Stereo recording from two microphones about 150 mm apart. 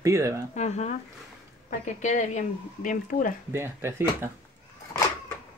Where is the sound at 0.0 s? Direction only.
20° right (ahead or behind).